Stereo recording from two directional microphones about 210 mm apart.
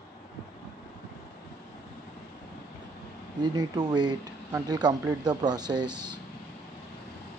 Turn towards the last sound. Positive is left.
turn(degrees=-20)  # may be behind; listen again after turning